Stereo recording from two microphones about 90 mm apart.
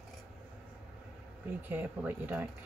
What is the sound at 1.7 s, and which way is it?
Speech, 20° right (ahead or behind).